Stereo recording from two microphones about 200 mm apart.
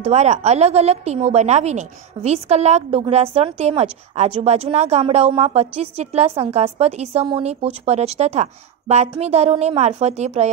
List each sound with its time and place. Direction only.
0.0 s a woman's voice: 35° right (ahead or behind)